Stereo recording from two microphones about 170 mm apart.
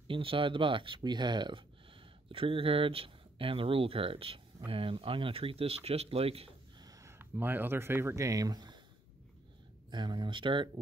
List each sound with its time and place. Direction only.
0.1 s speech: 30° right (ahead or behind)
6.8 s speech: 20° right (ahead or behind)
9.8 s speech: 25° right (ahead or behind)